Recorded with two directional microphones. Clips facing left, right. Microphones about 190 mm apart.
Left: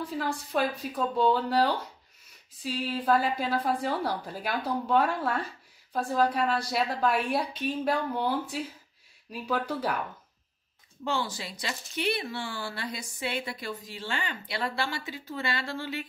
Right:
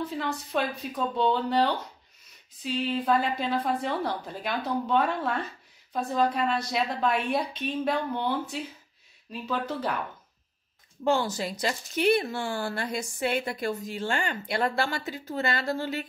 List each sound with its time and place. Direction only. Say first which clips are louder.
0.1 s a woman's voice: even; 5° left (ahead or behind)
11.1 s speech: right 6 dB; 45° right (ahead or behind)